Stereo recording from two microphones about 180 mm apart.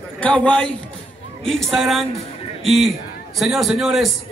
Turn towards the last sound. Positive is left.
turn(degrees=0)  # may be behind; listen again after turning